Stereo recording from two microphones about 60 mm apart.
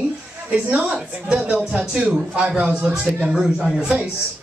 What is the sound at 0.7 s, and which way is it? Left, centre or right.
A man's voice, right.